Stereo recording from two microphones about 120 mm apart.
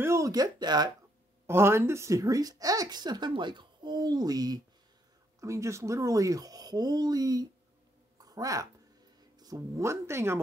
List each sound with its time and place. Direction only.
0.0 s speech: 25° right (ahead or behind)
1.5 s speech: 20° right (ahead or behind)
8.2 s a sound: 30° right (ahead or behind)
9.4 s speech: 30° right (ahead or behind)